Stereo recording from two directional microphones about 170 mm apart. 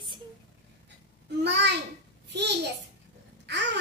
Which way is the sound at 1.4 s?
90° right.